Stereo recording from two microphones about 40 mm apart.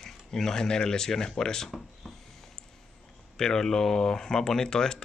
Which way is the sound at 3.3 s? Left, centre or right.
Centre.